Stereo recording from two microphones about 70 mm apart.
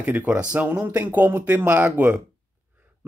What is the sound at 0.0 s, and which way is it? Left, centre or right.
Speech, right.